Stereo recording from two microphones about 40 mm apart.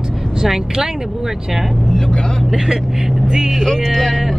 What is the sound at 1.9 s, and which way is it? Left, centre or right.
Speech, centre.